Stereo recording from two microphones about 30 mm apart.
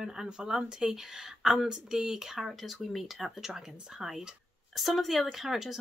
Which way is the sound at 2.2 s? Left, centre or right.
Centre.